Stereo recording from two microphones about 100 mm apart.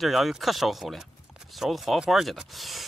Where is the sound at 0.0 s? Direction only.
Centre (ahead or behind).